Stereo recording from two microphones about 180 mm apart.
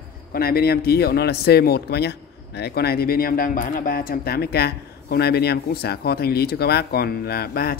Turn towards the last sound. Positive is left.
turn(degrees=60)  # may be behind; listen again after turning